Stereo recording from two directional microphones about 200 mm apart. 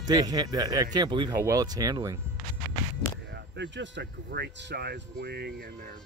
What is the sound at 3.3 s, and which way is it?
Speech, 60° right (ahead or behind).